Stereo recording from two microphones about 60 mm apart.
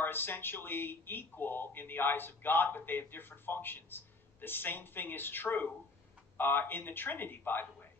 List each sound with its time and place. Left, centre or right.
0.0 s speech: left